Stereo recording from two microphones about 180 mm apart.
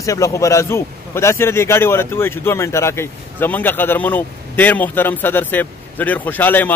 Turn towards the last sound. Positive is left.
turn(degrees=10)  # may be behind; listen again after turning